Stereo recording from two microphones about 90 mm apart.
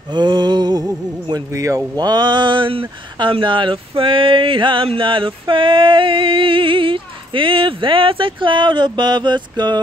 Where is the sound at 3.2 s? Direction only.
65° right (ahead or behind).